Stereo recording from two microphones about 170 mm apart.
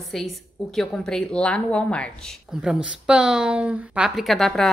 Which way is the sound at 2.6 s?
5° right (ahead or behind).